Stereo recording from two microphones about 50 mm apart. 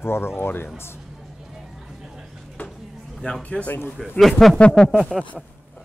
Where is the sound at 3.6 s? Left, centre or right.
Left.